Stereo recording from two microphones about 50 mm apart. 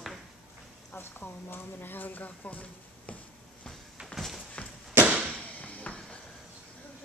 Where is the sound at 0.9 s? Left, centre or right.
Left.